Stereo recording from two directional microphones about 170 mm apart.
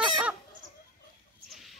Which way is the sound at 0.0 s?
10° right (ahead or behind).